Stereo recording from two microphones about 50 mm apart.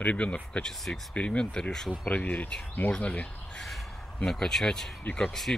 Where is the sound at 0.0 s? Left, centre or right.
Left.